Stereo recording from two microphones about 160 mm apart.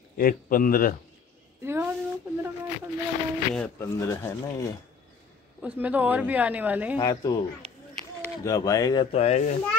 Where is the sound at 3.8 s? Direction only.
20° left (ahead or behind).